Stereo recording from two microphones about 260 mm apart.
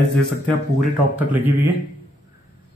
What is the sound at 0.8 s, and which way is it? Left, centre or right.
Speech, centre.